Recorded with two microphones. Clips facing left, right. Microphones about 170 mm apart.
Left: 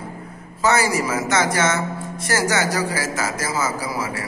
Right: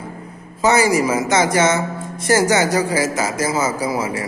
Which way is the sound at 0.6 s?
15° right (ahead or behind).